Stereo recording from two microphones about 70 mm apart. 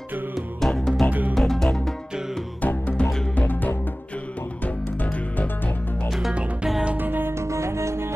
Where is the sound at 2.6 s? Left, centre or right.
Centre.